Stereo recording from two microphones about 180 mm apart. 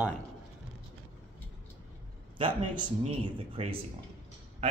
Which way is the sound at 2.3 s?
25° right (ahead or behind).